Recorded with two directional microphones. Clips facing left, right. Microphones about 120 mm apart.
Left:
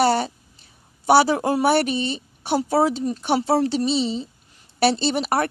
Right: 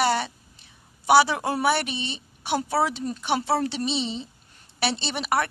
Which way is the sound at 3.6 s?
40° left (ahead or behind).